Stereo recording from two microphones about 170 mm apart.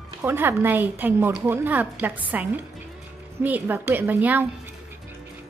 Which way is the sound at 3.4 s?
10° right (ahead or behind).